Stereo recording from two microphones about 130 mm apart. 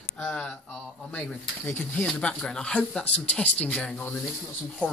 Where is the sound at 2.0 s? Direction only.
5° left (ahead or behind).